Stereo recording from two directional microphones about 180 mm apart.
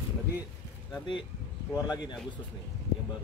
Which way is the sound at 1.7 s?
20° left (ahead or behind).